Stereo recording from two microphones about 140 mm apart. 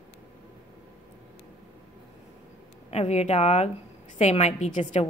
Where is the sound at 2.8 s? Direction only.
50° left (ahead or behind).